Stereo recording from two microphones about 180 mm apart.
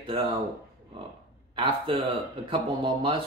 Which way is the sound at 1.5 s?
30° right (ahead or behind).